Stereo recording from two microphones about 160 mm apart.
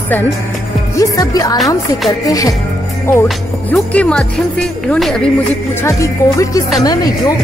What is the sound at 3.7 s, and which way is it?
Speech, 5° left (ahead or behind).